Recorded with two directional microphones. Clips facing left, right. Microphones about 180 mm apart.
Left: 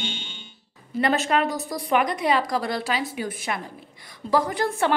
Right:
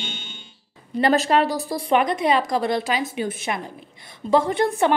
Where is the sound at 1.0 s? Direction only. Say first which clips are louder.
Right 4 dB; 35° right (ahead or behind).